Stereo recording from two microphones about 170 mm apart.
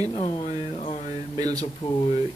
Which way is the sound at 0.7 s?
40° left (ahead or behind).